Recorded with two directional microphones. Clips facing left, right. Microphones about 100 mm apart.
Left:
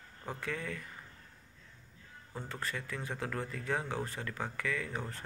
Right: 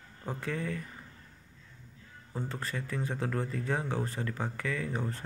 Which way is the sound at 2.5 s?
30° right (ahead or behind).